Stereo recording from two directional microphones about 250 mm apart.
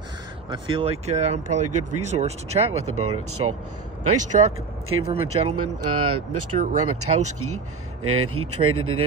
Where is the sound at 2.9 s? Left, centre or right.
Right.